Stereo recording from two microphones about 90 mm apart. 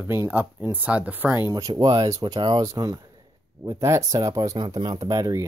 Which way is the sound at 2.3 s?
60° right (ahead or behind).